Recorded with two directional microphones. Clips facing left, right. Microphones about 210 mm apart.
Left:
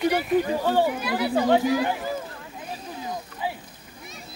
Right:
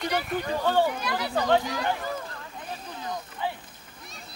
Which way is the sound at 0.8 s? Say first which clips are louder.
Left 4 dB; 10° left (ahead or behind).